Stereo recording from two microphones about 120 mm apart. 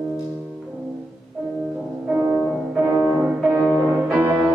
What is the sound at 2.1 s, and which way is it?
Music, 15° right (ahead or behind).